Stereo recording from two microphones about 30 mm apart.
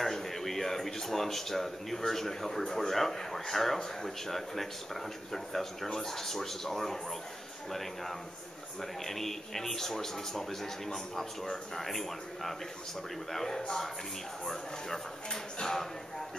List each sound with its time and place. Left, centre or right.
0.0 s speech: centre
9.0 s speech: centre